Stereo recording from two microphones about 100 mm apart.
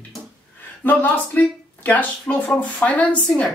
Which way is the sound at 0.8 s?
15° left (ahead or behind).